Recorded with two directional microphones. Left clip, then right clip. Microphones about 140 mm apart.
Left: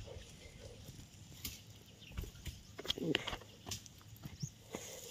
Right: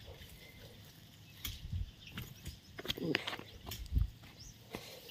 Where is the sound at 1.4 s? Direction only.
40° right (ahead or behind).